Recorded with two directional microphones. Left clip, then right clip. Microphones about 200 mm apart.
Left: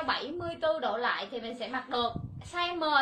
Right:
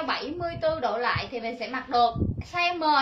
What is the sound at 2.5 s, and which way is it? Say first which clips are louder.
Speech: right 5 dB; 10° left (ahead or behind).